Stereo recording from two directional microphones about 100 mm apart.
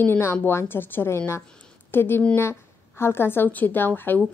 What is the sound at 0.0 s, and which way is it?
A woman's voice, 20° left (ahead or behind).